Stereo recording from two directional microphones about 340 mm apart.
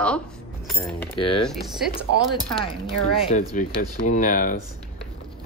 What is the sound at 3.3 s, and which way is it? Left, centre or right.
Speech, left.